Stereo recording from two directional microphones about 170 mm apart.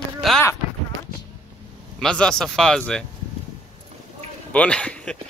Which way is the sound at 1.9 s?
5° left (ahead or behind).